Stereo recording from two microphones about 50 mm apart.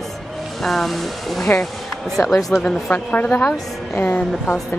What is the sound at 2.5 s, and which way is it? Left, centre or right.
A woman's voice, left.